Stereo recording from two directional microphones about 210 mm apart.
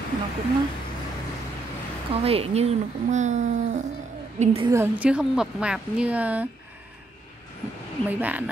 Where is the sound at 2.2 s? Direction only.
30° right (ahead or behind).